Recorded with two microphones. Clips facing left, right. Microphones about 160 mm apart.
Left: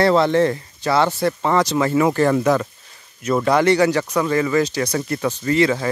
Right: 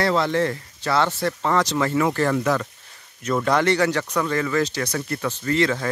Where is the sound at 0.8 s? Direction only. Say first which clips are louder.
Left 4 dB; 10° left (ahead or behind).